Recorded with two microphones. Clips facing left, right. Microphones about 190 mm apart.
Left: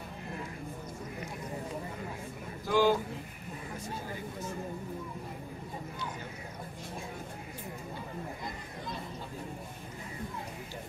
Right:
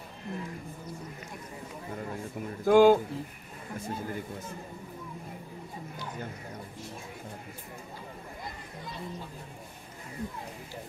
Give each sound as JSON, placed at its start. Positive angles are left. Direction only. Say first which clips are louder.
{"t": 2.6, "sound": "speech", "louder": "right 7 dB", "side_deg": -55}